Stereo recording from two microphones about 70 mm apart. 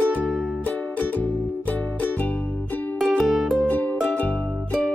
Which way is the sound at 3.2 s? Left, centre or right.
Centre.